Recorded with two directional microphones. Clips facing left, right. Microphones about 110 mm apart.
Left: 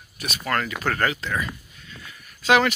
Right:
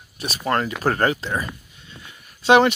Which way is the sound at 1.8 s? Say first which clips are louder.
Even; 25° right (ahead or behind).